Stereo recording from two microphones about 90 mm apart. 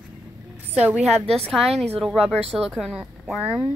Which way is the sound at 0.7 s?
15° right (ahead or behind).